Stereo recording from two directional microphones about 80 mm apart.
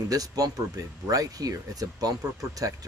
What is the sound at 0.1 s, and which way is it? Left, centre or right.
Speech, right.